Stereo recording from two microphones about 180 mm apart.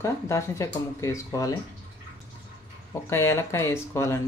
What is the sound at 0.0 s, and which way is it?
Speech, 15° left (ahead or behind).